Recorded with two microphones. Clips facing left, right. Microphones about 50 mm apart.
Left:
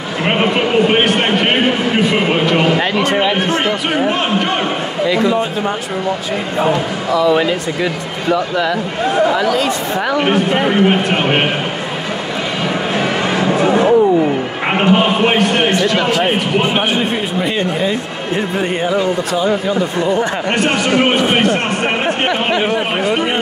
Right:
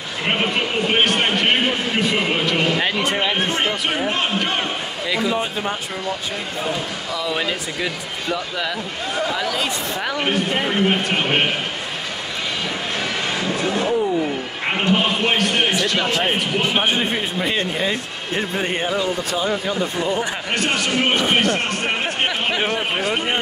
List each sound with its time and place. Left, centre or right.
0.2 s a man's voice: centre
1.2 s a sound: centre
7.1 s a man's voice: centre
10.2 s a man's voice: centre
12.9 s a sound: left
13.5 s vehicle: left
14.7 s a man's voice: left
15.7 s a man's voice: centre
20.9 s a man's voice: centre